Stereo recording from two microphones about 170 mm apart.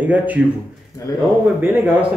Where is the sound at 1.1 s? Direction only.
20° left (ahead or behind).